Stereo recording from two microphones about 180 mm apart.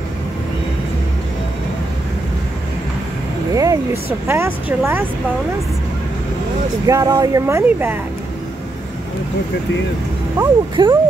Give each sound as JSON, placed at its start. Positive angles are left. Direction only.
{"t": 3.5, "sound": "speech", "side_deg": -15}
{"t": 6.9, "sound": "speech", "side_deg": -20}
{"t": 10.4, "sound": "speech", "side_deg": -15}